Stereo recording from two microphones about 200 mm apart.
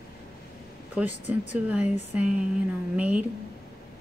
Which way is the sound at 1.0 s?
10° right (ahead or behind).